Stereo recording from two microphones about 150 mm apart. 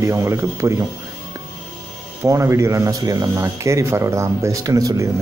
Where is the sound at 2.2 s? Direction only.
20° right (ahead or behind).